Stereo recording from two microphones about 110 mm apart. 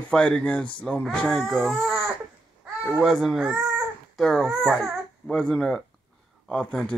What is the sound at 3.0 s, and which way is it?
Speech, centre (ahead or behind).